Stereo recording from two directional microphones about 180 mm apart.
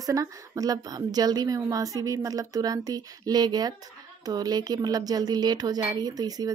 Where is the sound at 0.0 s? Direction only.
20° right (ahead or behind).